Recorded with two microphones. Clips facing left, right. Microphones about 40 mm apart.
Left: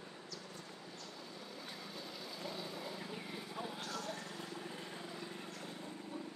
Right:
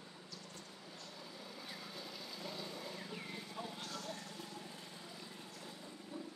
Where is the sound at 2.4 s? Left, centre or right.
Centre.